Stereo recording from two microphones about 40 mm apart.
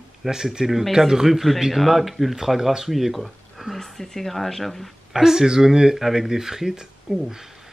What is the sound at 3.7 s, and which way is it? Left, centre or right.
Speech, centre.